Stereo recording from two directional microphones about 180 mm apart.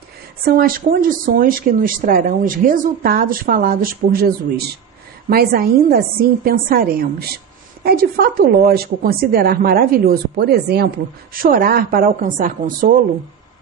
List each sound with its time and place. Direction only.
0.5 s a woman's voice: 55° right (ahead or behind)
11.3 s speech: 50° right (ahead or behind)